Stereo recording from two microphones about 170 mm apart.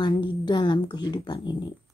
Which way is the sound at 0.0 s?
30° left (ahead or behind).